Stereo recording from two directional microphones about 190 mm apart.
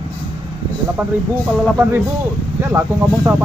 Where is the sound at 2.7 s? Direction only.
10° right (ahead or behind).